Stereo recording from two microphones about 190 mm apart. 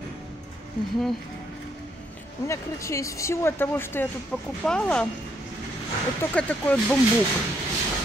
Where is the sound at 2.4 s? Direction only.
15° left (ahead or behind).